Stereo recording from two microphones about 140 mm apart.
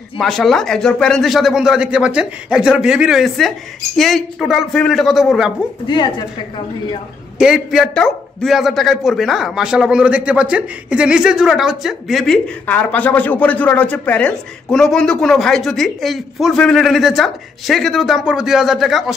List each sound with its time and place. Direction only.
0.2 s speech: centre (ahead or behind)
5.9 s a woman's voice: 35° left (ahead or behind)
7.3 s speech: 5° right (ahead or behind)
12.6 s speech: 10° left (ahead or behind)